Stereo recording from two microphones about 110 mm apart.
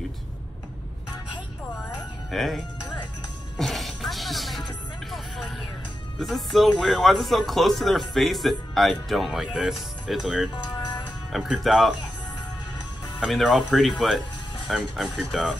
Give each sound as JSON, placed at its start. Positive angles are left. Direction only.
{"t": 2.3, "sound": "speech", "side_deg": 0}
{"t": 3.5, "sound": "music", "side_deg": 0}
{"t": 6.1, "sound": "speech", "side_deg": 0}
{"t": 10.5, "sound": "music", "side_deg": 40}
{"t": 11.3, "sound": "speech", "side_deg": 0}
{"t": 13.3, "sound": "speech", "side_deg": 0}